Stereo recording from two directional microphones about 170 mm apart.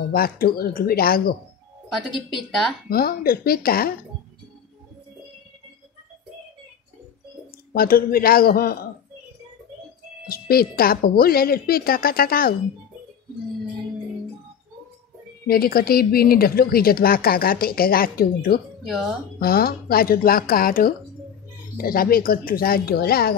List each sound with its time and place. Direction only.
0.1 s speech: 60° left (ahead or behind)
1.9 s speech: centre (ahead or behind)
2.9 s speech: 65° left (ahead or behind)
7.7 s speech: 60° left (ahead or behind)
10.2 s speech: 60° left (ahead or behind)
15.4 s speech: 60° left (ahead or behind)
18.9 s speech: centre (ahead or behind)
19.4 s speech: 60° left (ahead or behind)